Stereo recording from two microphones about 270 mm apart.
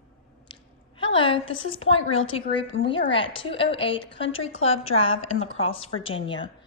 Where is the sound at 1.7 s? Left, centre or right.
Left.